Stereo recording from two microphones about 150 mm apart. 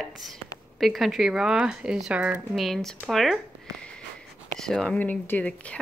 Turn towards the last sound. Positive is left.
turn(degrees=10)  # may be behind; listen again after turning